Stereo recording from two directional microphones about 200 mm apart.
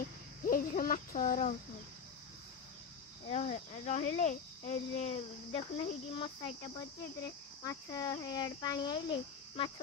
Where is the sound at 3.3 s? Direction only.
35° left (ahead or behind).